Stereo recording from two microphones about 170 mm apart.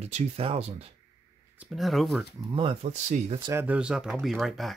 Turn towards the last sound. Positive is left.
turn(degrees=0)  # may be behind; listen again after turning